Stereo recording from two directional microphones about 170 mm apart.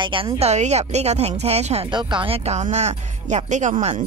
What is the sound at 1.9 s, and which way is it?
A woman's voice, 25° right (ahead or behind).